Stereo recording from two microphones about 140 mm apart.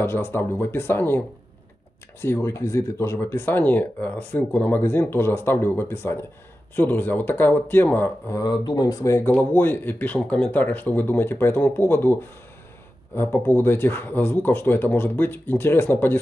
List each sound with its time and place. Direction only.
0.0 s speech: 15° left (ahead or behind)
2.2 s speech: 20° left (ahead or behind)
8.4 s speech: 30° left (ahead or behind)